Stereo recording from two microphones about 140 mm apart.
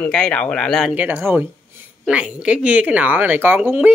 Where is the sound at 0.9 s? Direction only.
10° right (ahead or behind).